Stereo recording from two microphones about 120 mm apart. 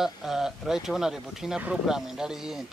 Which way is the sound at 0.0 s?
5° right (ahead or behind).